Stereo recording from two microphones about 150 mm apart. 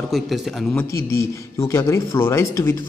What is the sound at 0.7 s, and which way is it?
Speech, 20° left (ahead or behind).